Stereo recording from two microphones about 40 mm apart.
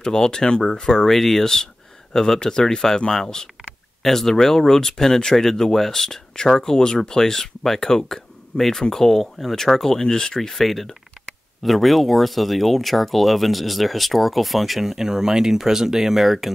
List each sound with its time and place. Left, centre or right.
0.0 s speech: centre
10.6 s speech: centre